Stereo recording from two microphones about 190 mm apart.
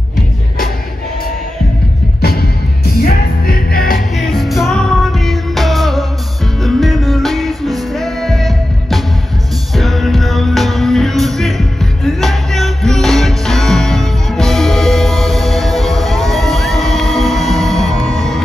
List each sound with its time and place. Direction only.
2.2 s music: 55° left (ahead or behind)
4.2 s music: centre (ahead or behind)